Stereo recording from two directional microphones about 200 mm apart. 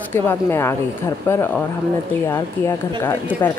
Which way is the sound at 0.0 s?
10° left (ahead or behind).